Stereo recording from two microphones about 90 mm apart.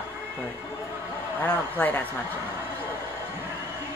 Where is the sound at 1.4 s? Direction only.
20° left (ahead or behind).